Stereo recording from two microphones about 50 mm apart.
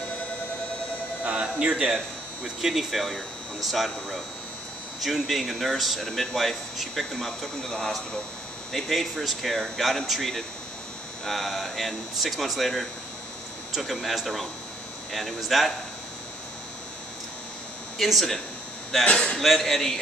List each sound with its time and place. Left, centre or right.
1.2 s speech: right
2.4 s speech: centre
17.9 s speech: centre
19.0 s a man's voice: centre
19.3 s a man's voice: centre